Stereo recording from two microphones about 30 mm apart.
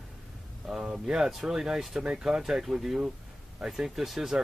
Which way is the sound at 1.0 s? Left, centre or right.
Right.